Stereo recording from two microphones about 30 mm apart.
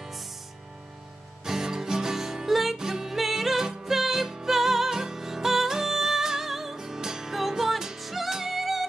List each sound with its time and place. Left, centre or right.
1.4 s music: centre
7.3 s music: centre